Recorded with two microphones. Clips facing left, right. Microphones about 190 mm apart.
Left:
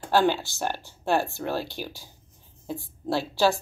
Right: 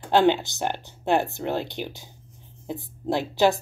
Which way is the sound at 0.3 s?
20° right (ahead or behind).